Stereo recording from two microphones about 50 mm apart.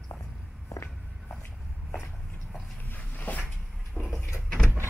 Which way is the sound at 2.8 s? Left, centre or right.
Left.